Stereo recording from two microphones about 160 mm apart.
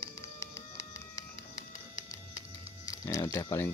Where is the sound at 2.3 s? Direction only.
20° left (ahead or behind).